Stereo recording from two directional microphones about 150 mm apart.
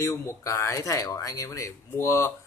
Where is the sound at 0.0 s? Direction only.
20° left (ahead or behind).